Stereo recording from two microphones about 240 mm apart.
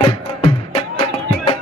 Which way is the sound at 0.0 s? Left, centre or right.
Left.